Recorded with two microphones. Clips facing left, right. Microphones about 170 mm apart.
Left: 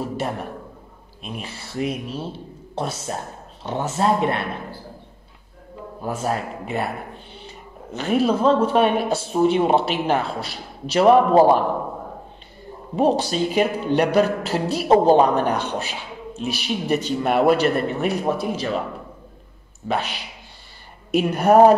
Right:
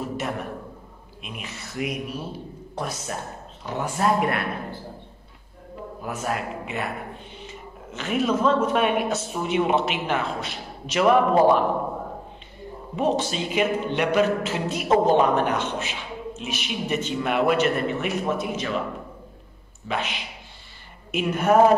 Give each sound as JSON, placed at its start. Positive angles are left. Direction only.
{"t": 1.2, "sound": "speech", "side_deg": 30}
{"t": 6.0, "sound": "speech", "side_deg": 30}
{"t": 12.9, "sound": "speech", "side_deg": 35}
{"t": 19.9, "sound": "speech", "side_deg": 35}